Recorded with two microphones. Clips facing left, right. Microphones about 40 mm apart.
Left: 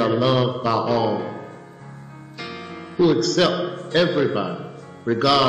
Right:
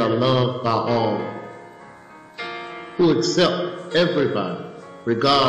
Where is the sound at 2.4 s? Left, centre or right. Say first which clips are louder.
Right 3 dB; centre.